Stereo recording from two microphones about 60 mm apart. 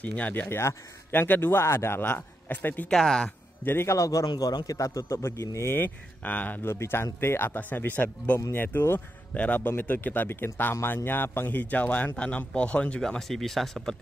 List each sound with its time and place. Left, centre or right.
0.0 s speech: left
0.5 s a man's voice: left
1.1 s a man's voice: left
2.9 s speech: centre
3.6 s a man's voice: left
3.9 s a man's voice: left
5.8 s speech: left
6.6 s a man's voice: left
13.0 s speech: centre